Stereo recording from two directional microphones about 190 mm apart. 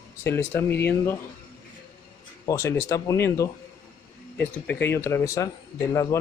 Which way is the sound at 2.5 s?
15° left (ahead or behind).